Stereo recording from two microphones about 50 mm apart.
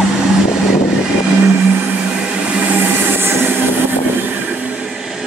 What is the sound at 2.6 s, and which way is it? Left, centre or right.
Vehicle, right.